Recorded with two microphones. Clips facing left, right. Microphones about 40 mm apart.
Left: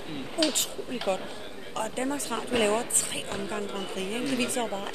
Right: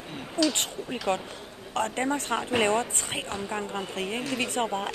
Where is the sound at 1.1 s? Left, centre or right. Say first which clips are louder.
Right 2 dB; right.